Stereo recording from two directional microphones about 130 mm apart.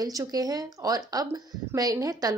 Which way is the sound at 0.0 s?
30° right (ahead or behind).